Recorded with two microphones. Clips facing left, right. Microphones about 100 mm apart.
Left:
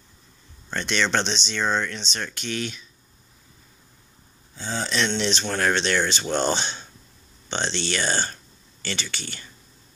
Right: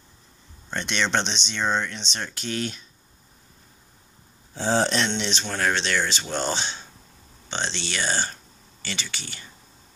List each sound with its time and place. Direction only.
0.7 s speech: 20° right (ahead or behind); by 2.8 s 40° right (ahead or behind)
4.6 s speech: 80° right
5.1 s speech: 10° right (ahead or behind)